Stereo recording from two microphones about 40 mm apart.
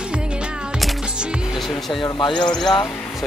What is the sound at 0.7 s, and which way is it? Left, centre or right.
Music, centre.